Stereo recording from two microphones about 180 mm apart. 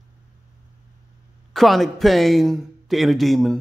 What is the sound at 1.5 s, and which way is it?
A man's voice, centre (ahead or behind).